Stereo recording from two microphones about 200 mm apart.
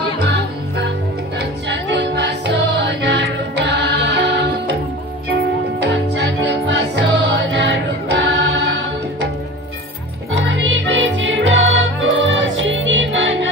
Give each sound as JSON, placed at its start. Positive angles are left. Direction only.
{"t": 0.2, "sound": "music", "side_deg": -55}
{"t": 10.3, "sound": "music", "side_deg": -65}